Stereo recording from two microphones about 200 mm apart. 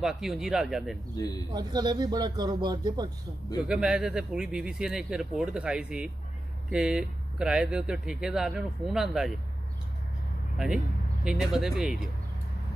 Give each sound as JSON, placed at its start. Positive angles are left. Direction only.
{"t": 0.0, "sound": "speech", "side_deg": 0}
{"t": 1.1, "sound": "speech", "side_deg": 20}
{"t": 1.5, "sound": "speech", "side_deg": -20}
{"t": 3.6, "sound": "speech", "side_deg": -5}
{"t": 11.2, "sound": "speech", "side_deg": -5}